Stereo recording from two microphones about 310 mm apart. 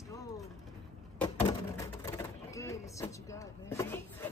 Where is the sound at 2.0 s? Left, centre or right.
Centre.